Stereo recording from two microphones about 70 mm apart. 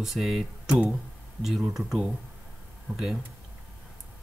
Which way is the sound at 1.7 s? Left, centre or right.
Centre.